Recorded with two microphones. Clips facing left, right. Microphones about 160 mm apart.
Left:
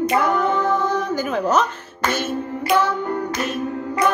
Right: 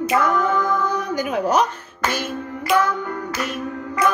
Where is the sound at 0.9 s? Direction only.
10° right (ahead or behind).